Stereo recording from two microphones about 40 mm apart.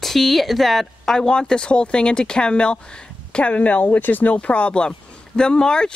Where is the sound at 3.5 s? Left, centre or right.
Left.